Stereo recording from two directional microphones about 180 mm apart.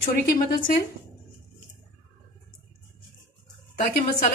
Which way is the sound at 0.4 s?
50° left (ahead or behind).